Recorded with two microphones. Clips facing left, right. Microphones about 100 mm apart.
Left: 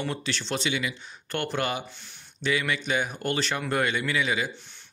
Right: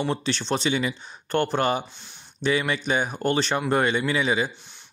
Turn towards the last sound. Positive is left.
turn(degrees=-30)  # may be behind; listen again after turning